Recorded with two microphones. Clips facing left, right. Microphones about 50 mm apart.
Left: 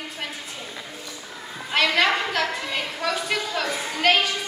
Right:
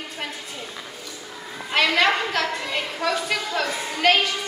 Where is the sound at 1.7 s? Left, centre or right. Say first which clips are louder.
Right 1 dB; centre.